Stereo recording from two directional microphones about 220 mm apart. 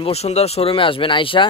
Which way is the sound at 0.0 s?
30° left (ahead or behind).